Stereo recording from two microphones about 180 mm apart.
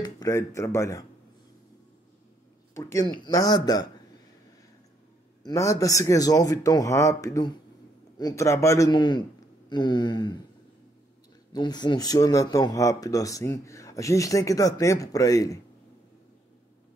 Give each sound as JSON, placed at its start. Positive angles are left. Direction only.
{"t": 0.0, "sound": "speech", "side_deg": 20}
{"t": 2.7, "sound": "speech", "side_deg": 15}
{"t": 5.4, "sound": "speech", "side_deg": 15}
{"t": 11.5, "sound": "speech", "side_deg": 25}